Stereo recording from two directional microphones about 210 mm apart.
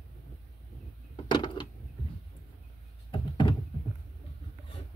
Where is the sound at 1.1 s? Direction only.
20° left (ahead or behind).